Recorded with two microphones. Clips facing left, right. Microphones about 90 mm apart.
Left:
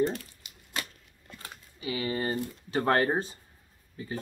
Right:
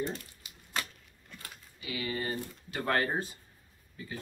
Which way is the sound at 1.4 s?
30° left (ahead or behind).